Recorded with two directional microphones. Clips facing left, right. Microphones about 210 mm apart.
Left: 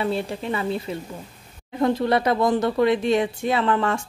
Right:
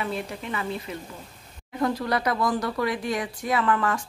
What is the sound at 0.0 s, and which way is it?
Speech, 30° left (ahead or behind).